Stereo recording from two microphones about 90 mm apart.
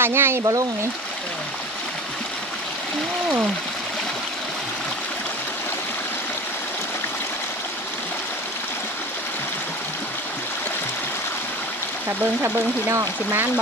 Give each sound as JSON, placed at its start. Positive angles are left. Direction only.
{"t": 0.0, "sound": "speech", "side_deg": -25}
{"t": 0.4, "sound": "speech", "side_deg": -40}
{"t": 12.4, "sound": "speech", "side_deg": -30}